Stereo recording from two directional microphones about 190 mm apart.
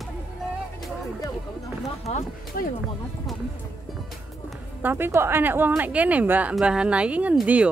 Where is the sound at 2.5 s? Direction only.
55° left (ahead or behind).